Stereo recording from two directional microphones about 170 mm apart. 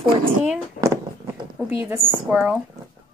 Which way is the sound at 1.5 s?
10° right (ahead or behind).